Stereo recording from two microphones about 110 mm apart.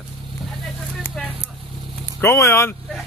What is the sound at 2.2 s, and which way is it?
Speech, 25° left (ahead or behind).